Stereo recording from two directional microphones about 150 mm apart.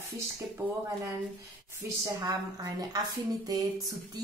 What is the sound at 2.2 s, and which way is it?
Speech, 25° right (ahead or behind).